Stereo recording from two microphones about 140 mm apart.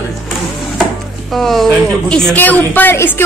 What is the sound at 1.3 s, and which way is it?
A man's voice, centre (ahead or behind).